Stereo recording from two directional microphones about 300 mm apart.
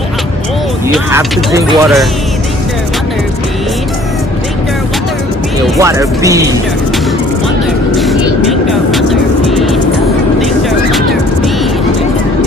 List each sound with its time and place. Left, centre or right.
0.9 s speech: centre
5.8 s speech: centre
7.9 s vehicle: centre